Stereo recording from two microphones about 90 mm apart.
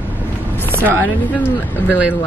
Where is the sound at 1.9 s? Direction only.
15° right (ahead or behind).